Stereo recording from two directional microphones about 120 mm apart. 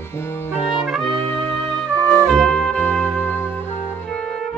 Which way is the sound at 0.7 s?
Centre (ahead or behind).